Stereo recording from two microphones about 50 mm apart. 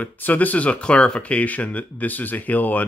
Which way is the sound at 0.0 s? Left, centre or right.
Left.